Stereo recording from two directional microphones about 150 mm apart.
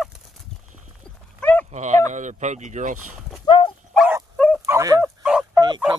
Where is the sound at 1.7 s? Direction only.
50° right (ahead or behind).